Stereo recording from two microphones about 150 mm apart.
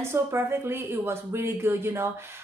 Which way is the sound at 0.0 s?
15° right (ahead or behind).